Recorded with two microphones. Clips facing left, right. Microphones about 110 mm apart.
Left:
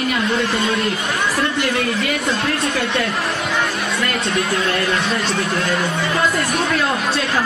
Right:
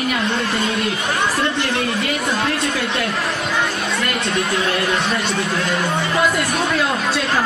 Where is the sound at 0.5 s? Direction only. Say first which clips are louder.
Left 1 dB; 30° left (ahead or behind).